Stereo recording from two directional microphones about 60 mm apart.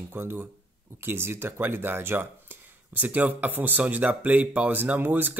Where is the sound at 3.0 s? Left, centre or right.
Right.